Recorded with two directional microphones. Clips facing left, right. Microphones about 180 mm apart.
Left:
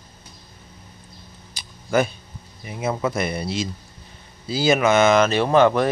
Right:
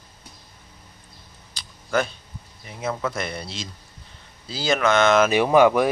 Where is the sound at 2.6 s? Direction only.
10° left (ahead or behind).